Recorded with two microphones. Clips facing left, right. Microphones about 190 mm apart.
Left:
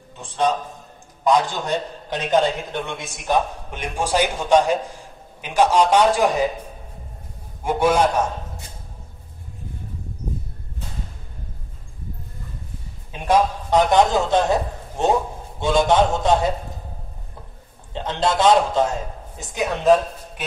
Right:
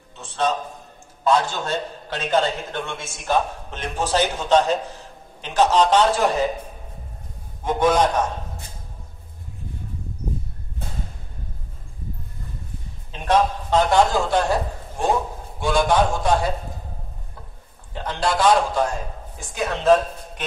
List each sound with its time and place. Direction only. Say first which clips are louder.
0.2 s a man's voice: left 2 dB; 15° left (ahead or behind)
7.6 s a man's voice: left 1 dB; 10° left (ahead or behind)
13.1 s a man's voice: left 1 dB; 10° left (ahead or behind)
17.9 s a man's voice: left 2 dB; 20° left (ahead or behind)